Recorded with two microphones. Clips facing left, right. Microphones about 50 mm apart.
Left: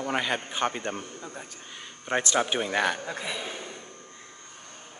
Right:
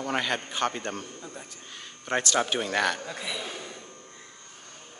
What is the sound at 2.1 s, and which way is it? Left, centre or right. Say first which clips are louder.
Speech: even; centre.